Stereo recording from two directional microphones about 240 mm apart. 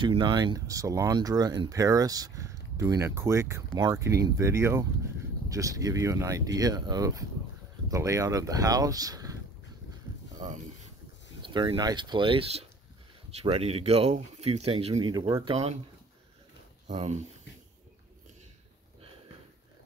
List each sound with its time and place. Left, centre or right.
0.0 s speech: centre
10.4 s speech: centre
15.5 s speech: right
16.8 s speech: right